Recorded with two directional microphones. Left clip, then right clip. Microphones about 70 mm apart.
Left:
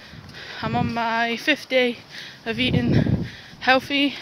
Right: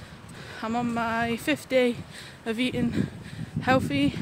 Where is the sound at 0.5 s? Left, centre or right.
Right.